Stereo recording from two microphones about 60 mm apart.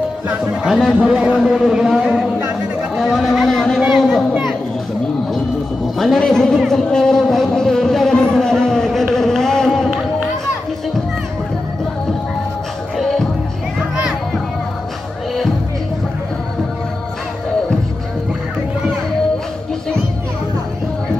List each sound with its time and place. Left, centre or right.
0.3 s a man's voice: centre
3.8 s a sound: centre
5.9 s a man's voice: centre
12.9 s music: centre